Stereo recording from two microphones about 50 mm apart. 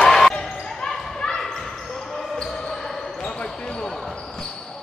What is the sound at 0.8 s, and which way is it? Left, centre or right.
Basketball bounce, centre.